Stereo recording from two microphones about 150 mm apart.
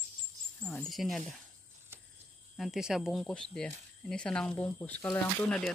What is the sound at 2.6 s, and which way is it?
Speech, 5° right (ahead or behind).